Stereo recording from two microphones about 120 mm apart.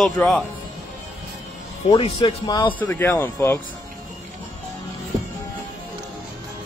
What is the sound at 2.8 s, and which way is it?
Speech, 20° left (ahead or behind).